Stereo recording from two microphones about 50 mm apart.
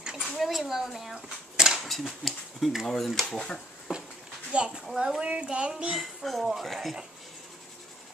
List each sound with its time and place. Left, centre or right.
0.4 s a child's voice: centre
1.9 s speech: centre
4.5 s speech: centre
4.8 s a woman's voice: centre
5.2 s speech: right
5.9 s speech: centre